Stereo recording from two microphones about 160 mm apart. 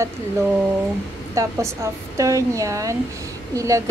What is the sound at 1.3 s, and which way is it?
A woman's voice, 20° right (ahead or behind).